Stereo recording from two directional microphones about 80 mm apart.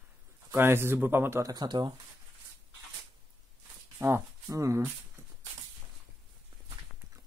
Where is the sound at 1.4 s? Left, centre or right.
Right.